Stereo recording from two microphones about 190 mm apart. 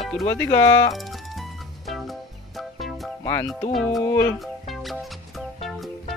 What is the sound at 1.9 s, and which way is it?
Music, centre (ahead or behind).